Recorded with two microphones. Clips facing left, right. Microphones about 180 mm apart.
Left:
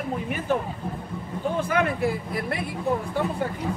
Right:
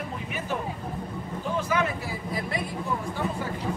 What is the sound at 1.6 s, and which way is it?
Speech, 55° left (ahead or behind).